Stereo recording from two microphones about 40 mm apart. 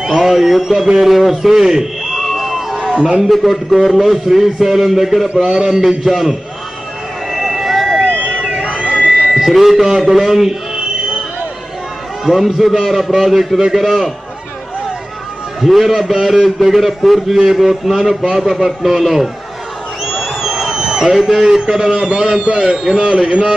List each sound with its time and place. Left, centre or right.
0.0 s a man's voice: centre
2.9 s a man's voice: centre
3.3 s a man's voice: centre
7.2 s a sound: centre
8.6 s buzzer: right
9.3 s a man's voice: centre
12.3 s a man's voice: centre
15.6 s a man's voice: centre
20.1 s a sound: centre
21.9 s a man's voice: right